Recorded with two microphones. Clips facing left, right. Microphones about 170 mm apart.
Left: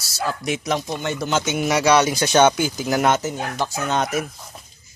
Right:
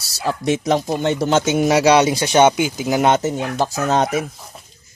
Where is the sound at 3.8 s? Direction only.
35° right (ahead or behind).